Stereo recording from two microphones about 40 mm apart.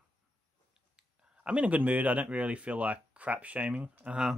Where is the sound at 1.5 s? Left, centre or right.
Right.